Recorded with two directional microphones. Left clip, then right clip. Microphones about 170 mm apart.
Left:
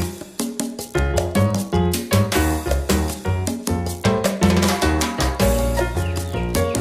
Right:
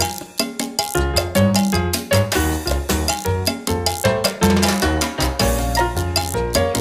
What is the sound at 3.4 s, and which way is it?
Music, centre (ahead or behind).